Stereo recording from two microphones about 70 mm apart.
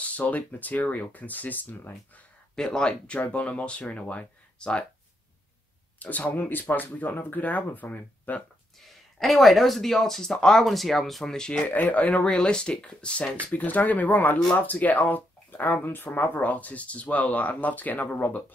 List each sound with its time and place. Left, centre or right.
0.0 s speech: left
2.5 s speech: centre
5.9 s speech: left
8.7 s speech: centre
11.6 s speech: left